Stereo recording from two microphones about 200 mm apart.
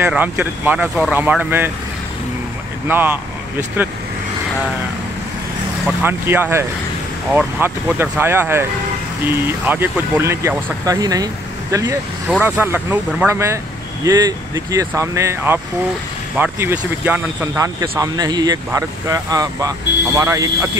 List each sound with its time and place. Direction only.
0.0 s speech: 10° right (ahead or behind)
2.9 s speech: 10° right (ahead or behind)
6.0 s speech: 10° right (ahead or behind)